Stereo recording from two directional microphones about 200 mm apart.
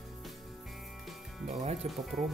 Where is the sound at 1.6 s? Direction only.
35° right (ahead or behind).